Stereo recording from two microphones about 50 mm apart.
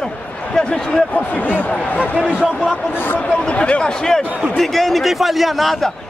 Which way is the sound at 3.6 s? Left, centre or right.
Centre.